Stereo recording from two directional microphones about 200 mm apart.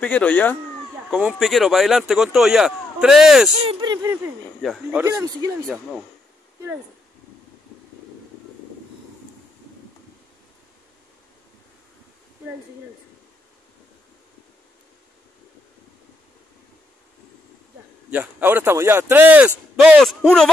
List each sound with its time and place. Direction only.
0.0 s speech: 5° left (ahead or behind)
3.8 s speech: 20° right (ahead or behind)
4.1 s speech: 5° right (ahead or behind)
5.0 s speech: 15° right (ahead or behind)
18.1 s speech: 10° right (ahead or behind)